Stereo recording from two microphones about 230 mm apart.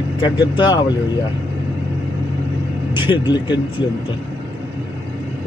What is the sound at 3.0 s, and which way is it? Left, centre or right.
Speech, left.